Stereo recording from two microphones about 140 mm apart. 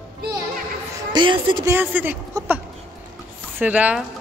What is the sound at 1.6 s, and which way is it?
Speech, 15° right (ahead or behind).